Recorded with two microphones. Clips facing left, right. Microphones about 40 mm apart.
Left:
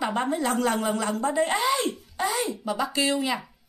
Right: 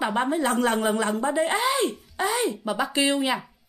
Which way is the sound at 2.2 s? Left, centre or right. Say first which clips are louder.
Right 3 dB; right.